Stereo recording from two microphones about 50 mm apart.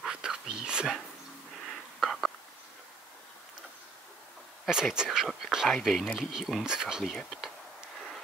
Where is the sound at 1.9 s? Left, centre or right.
Centre.